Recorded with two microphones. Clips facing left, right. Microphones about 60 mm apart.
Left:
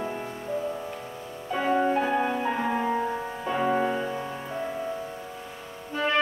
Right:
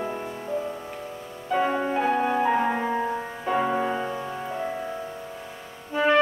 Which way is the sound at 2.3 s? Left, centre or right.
Centre.